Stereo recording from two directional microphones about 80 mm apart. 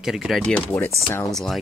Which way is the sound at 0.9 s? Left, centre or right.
Left.